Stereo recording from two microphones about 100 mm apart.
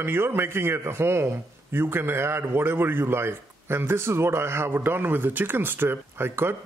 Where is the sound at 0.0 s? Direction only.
25° right (ahead or behind).